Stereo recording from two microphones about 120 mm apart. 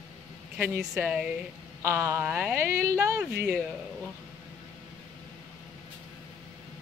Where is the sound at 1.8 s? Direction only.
20° right (ahead or behind).